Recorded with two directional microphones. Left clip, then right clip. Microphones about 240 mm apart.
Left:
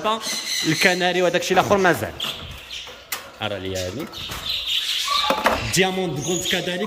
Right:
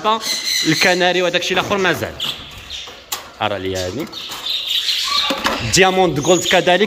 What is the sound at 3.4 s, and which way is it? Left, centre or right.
Speech, centre.